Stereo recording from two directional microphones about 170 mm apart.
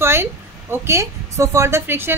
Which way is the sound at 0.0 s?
15° right (ahead or behind).